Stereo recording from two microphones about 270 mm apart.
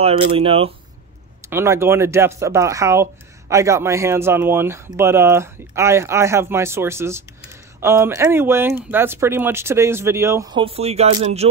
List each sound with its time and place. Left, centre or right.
0.0 s speech: right
1.5 s speech: centre